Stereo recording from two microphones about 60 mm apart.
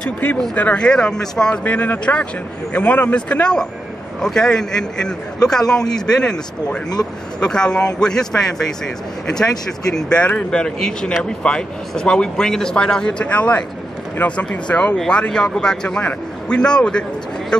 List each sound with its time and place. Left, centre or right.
0.6 s speech: left
1.6 s speech: left